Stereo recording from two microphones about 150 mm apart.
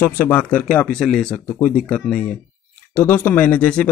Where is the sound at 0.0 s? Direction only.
10° left (ahead or behind).